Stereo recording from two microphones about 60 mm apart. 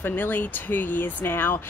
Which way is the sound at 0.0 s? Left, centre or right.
Left.